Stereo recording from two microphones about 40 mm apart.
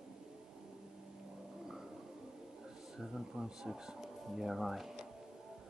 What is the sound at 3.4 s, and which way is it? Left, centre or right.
Speech, centre.